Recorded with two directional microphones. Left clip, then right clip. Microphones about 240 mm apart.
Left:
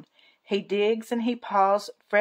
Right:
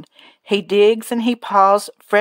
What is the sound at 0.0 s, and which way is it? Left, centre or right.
Speech, right.